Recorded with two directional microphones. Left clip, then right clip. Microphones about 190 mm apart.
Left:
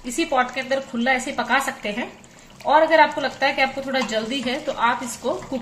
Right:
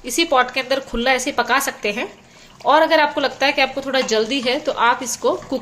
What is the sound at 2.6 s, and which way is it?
A woman's voice, 90° right.